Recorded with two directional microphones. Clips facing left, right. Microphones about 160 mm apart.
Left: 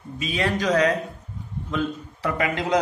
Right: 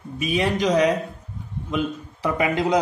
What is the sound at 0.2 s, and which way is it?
A man's voice, 15° right (ahead or behind).